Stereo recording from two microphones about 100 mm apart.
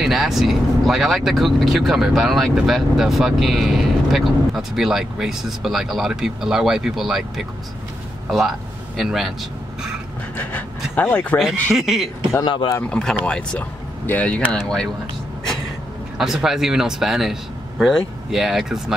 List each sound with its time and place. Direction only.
0.0 s a man's voice: centre (ahead or behind)
11.0 s speech: 15° left (ahead or behind)
11.7 s speech: 5° right (ahead or behind)
12.4 s speech: 50° left (ahead or behind)
12.9 s speech: 10° left (ahead or behind)
16.2 s speech: 5° right (ahead or behind)